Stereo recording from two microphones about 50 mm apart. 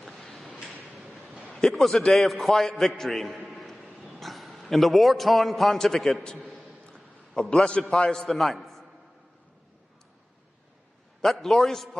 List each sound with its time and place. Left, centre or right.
0.0 s a sound: centre
0.9 s train: centre
1.7 s a man's voice: centre
6.3 s a sound: centre
7.5 s a man's voice: centre
11.1 s a man's voice: centre